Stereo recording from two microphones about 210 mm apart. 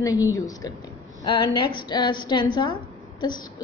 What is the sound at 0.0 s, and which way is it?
A woman's voice, 15° left (ahead or behind).